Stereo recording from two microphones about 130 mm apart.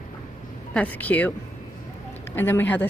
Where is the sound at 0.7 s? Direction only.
10° left (ahead or behind).